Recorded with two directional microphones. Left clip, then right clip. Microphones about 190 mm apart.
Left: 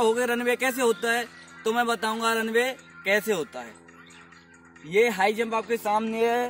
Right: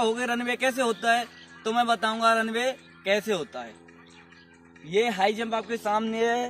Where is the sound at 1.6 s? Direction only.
15° right (ahead or behind).